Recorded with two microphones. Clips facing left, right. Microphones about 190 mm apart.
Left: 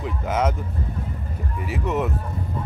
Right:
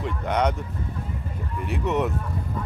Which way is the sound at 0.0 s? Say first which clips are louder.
Even; 5° left (ahead or behind).